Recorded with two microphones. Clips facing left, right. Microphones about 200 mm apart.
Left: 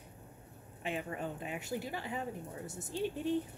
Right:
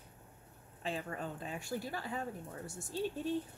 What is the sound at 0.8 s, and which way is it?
Speech, 20° left (ahead or behind).